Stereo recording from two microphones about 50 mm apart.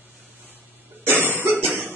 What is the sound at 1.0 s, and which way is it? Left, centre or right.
Cough, right.